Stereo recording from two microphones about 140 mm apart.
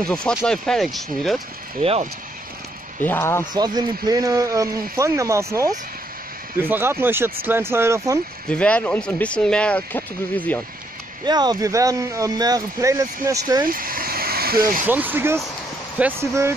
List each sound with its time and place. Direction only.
0.0 s speech: 5° left (ahead or behind)
1.8 s speech: 45° right (ahead or behind)
3.0 s speech: 15° left (ahead or behind)
3.5 s speech: 30° right (ahead or behind)
8.5 s speech: 10° left (ahead or behind)
11.2 s speech: 30° right (ahead or behind)
13.7 s a sound: 90° right
14.9 s speech: 15° right (ahead or behind)